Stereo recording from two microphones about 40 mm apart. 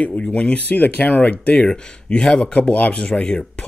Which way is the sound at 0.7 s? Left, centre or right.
Left.